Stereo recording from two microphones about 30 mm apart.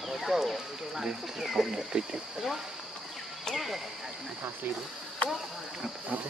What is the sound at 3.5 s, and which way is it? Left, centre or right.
Speech, centre.